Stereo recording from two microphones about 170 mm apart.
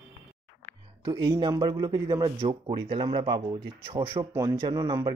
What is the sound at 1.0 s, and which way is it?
Speech, 25° right (ahead or behind).